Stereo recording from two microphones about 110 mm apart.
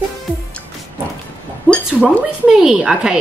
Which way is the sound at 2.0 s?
5° right (ahead or behind).